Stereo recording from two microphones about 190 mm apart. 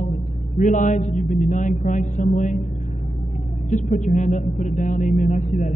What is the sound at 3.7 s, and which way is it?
A man's voice, 40° left (ahead or behind).